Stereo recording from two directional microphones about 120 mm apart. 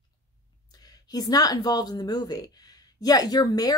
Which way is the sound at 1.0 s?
30° left (ahead or behind).